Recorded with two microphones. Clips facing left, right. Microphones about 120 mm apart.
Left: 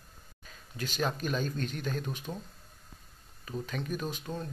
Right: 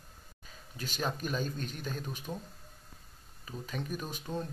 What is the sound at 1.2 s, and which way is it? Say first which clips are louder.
Speech: left 3 dB; 5° right (ahead or behind).